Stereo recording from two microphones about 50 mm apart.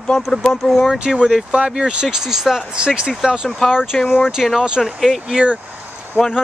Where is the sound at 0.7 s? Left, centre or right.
Centre.